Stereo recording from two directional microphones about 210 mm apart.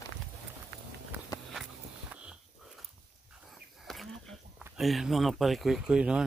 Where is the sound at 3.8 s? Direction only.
Centre (ahead or behind).